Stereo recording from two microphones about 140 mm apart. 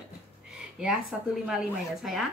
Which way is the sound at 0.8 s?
5° right (ahead or behind).